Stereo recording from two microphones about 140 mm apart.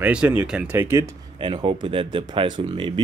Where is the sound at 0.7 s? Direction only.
20° right (ahead or behind).